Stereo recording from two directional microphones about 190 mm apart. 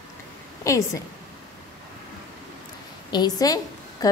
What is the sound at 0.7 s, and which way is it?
Speech, 15° left (ahead or behind).